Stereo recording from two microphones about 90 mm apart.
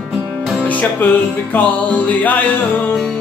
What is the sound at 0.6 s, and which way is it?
Music, 15° left (ahead or behind).